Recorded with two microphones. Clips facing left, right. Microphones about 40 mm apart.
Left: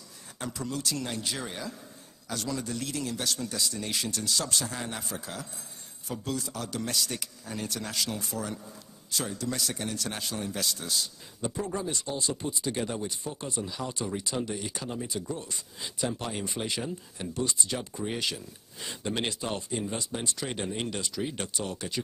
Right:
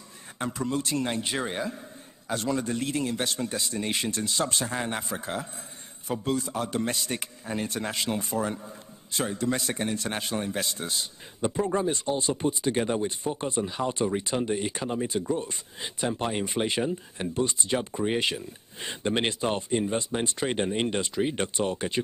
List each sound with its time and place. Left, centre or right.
0.4 s a man's voice: right